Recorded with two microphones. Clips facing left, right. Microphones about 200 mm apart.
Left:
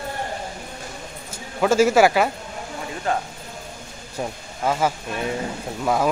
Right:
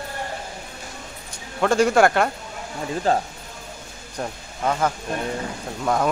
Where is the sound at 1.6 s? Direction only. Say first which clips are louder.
Left 1 dB; 5° left (ahead or behind).